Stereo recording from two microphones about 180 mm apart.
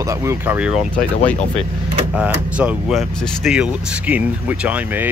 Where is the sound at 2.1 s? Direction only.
10° right (ahead or behind).